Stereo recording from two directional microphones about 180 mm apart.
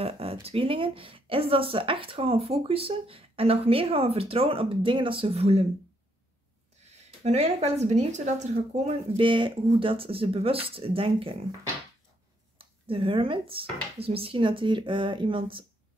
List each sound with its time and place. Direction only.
0.0 s speech: 35° right (ahead or behind)
7.2 s speech: 35° right (ahead or behind)
12.5 s speech: 30° right (ahead or behind)